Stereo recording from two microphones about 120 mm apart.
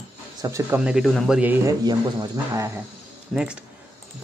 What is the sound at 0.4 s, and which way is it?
Speech, 25° right (ahead or behind).